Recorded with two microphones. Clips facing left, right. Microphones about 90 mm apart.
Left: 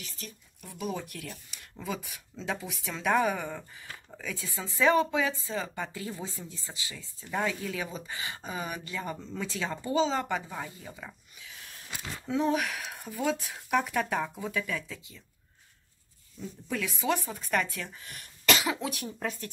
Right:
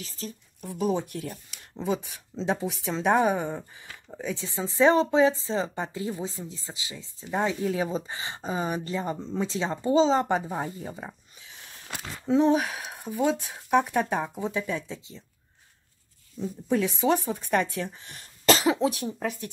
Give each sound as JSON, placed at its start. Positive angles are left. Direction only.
{"t": 0.0, "sound": "speech", "side_deg": -35}
{"t": 16.3, "sound": "speech", "side_deg": -30}
{"t": 19.1, "sound": "speech", "side_deg": -10}